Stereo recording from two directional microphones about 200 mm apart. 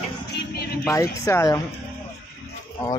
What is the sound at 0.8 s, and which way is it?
Speech, 15° left (ahead or behind).